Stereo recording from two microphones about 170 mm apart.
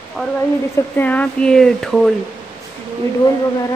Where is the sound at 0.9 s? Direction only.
10° left (ahead or behind).